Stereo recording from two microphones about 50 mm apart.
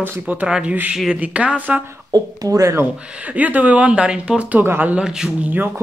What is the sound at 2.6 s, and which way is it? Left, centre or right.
Speech, right.